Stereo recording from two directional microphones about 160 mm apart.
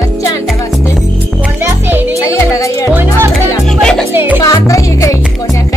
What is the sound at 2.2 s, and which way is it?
Music, 20° left (ahead or behind).